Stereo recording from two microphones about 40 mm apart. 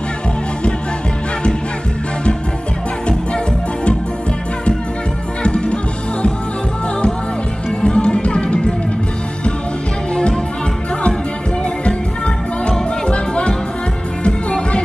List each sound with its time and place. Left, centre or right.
5.4 s music: left
7.8 s music: left
10.1 s music: left
13.0 s music: left